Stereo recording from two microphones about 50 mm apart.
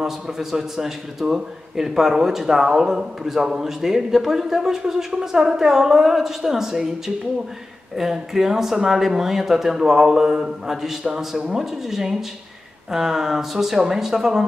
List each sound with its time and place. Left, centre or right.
0.0 s a man's voice: centre
7.9 s a man's voice: centre